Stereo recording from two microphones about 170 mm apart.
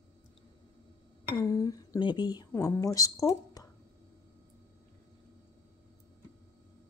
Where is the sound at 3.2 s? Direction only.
20° left (ahead or behind).